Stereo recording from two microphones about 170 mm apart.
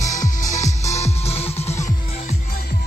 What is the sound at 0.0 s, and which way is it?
Music, 45° left (ahead or behind).